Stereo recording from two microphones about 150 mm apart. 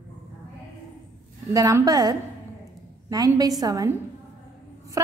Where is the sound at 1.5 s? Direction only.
20° right (ahead or behind).